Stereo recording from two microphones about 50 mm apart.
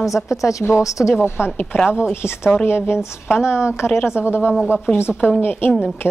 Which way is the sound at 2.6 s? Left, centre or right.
Left.